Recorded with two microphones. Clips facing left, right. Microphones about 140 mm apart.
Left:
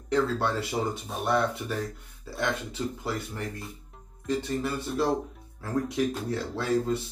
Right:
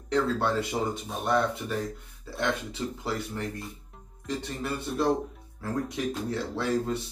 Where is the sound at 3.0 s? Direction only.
Centre (ahead or behind).